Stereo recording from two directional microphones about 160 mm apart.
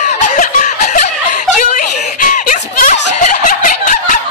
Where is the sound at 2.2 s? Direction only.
60° left (ahead or behind).